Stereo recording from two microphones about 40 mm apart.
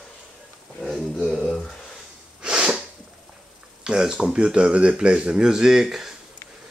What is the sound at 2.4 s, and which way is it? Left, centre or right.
Sneeze, right.